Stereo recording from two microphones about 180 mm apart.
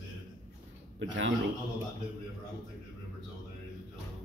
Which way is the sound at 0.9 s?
90° right.